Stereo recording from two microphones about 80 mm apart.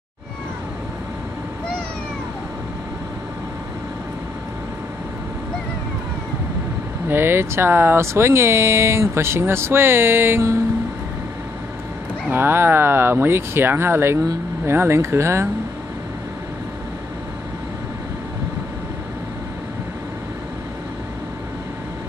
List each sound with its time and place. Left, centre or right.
7.1 s speech: right
12.3 s speech: right